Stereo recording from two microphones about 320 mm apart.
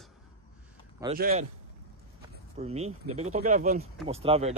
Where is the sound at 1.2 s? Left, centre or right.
Right.